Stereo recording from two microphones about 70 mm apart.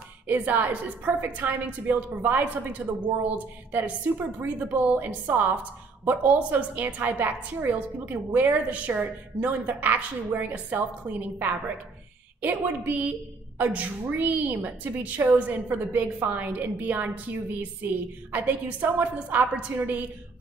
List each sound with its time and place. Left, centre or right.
0.3 s a woman's voice: right